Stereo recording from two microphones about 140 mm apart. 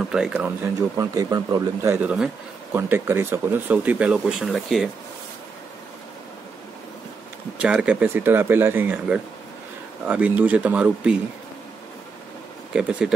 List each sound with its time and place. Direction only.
0.1 s speech: 5° right (ahead or behind)
0.7 s speech: 25° right (ahead or behind)
2.0 s speech: 5° right (ahead or behind)
2.7 s speech: 15° right (ahead or behind); by 4.8 s centre (ahead or behind)
7.6 s speech: 10° right (ahead or behind)
12.7 s speech: 5° right (ahead or behind)